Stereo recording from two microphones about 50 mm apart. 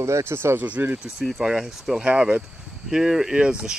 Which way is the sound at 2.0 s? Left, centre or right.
Right.